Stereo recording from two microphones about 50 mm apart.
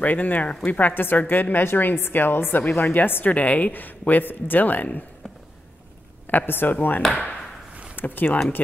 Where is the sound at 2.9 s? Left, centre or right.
Left.